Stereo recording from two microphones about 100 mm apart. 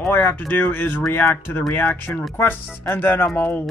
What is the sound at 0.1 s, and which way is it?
Speech, 20° left (ahead or behind).